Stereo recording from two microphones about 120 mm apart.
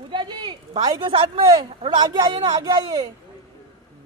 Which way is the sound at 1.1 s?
50° right (ahead or behind).